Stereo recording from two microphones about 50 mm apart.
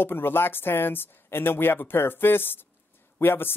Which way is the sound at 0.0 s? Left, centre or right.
Left.